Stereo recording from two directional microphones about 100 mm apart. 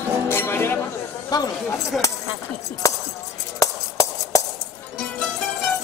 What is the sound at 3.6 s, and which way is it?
Music, 35° left (ahead or behind).